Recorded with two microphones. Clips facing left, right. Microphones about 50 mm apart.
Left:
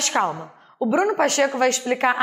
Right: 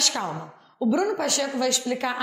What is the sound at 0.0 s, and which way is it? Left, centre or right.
A woman's voice, left.